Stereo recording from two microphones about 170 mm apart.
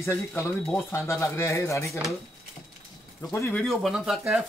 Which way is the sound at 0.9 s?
15° left (ahead or behind).